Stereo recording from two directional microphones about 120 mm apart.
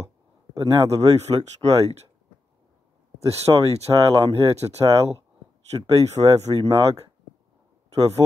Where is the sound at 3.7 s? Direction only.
60° right (ahead or behind).